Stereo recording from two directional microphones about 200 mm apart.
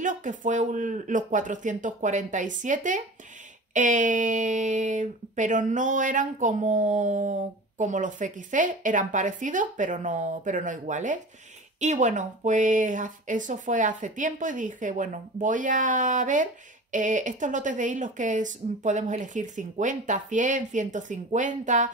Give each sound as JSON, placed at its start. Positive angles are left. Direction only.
{"t": 0.0, "sound": "speech", "side_deg": -40}